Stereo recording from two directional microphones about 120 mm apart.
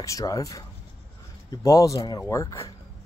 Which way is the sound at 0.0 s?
25° left (ahead or behind).